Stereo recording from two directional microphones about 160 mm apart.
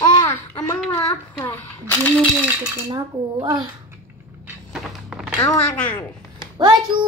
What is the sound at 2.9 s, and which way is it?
Speech, 25° right (ahead or behind).